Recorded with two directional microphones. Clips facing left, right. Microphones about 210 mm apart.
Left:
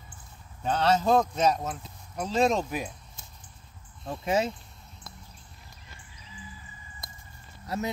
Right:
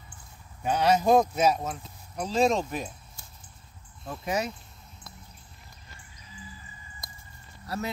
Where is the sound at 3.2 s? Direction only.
20° left (ahead or behind).